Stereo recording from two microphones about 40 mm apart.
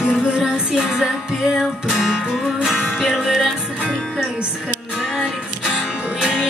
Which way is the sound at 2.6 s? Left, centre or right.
Centre.